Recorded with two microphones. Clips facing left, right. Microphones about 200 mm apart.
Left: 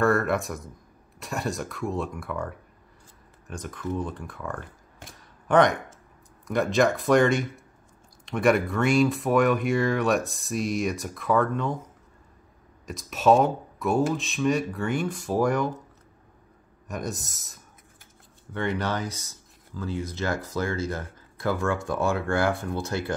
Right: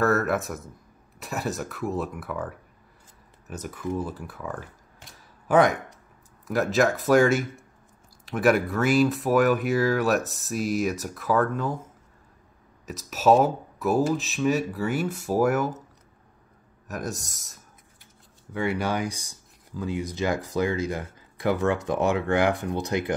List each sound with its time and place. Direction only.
0.0 s speech: 5° right (ahead or behind)
12.8 s speech: centre (ahead or behind)
16.8 s speech: centre (ahead or behind); by 23.1 s 15° right (ahead or behind)